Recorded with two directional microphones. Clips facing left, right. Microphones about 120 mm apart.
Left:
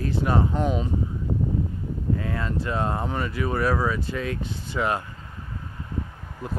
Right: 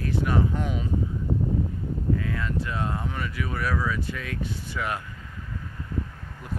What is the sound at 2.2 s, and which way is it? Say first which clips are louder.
Speech: left 1 dB; 35° left (ahead or behind).